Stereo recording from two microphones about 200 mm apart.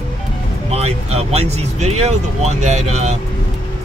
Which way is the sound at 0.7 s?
30° right (ahead or behind).